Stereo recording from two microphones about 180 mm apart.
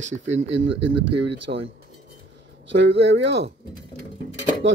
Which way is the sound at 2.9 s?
75° right (ahead or behind).